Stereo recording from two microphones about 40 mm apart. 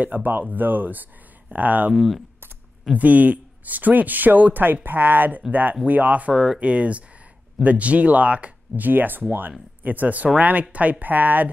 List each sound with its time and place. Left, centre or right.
0.0 s speech: right
2.0 s speech: centre
3.0 s speech: right
6.3 s speech: centre
6.6 s speech: right